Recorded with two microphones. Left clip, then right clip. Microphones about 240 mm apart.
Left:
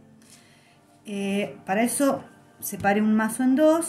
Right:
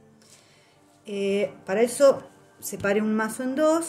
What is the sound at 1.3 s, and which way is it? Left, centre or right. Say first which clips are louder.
Speech: right 1 dB; right.